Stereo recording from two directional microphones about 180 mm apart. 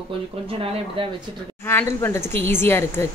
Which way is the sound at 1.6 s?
10° left (ahead or behind).